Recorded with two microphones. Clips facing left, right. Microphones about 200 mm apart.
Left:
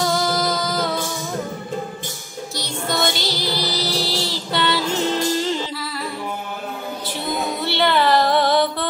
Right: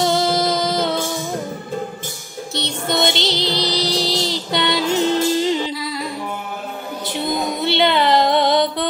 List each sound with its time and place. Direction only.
0.0 s music: 25° right (ahead or behind)
2.5 s music: 25° right (ahead or behind)
7.6 s music: 20° right (ahead or behind)